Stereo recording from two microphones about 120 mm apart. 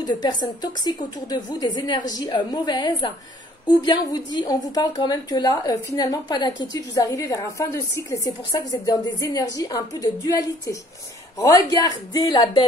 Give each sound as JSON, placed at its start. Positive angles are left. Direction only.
{"t": 0.0, "sound": "a woman's voice", "side_deg": 35}